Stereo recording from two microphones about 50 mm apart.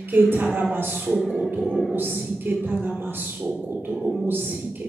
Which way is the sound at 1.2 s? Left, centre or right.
Centre.